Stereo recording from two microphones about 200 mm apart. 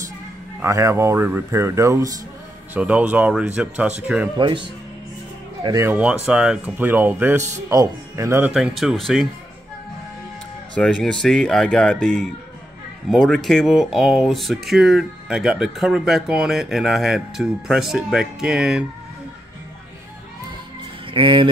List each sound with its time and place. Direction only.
0.6 s speech: 15° right (ahead or behind)
4.4 s speech: 25° right (ahead or behind)
5.6 s speech: 15° right (ahead or behind); by 9.3 s centre (ahead or behind)
10.7 s speech: 5° left (ahead or behind)
21.1 s speech: 25° right (ahead or behind)